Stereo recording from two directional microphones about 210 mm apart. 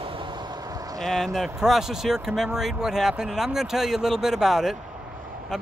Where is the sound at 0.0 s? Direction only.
25° right (ahead or behind).